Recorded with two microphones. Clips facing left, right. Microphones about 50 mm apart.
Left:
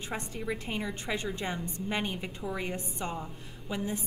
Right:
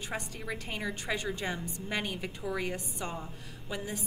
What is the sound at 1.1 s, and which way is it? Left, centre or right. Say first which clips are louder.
A woman's voice: left 1 dB; left.